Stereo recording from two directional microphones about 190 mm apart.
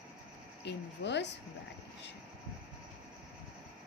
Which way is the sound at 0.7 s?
65° left (ahead or behind).